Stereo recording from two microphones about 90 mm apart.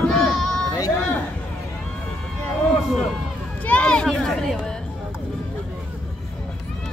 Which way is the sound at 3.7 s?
10° left (ahead or behind).